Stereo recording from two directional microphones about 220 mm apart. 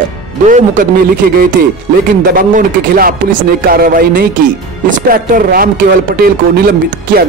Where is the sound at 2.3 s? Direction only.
40° right (ahead or behind).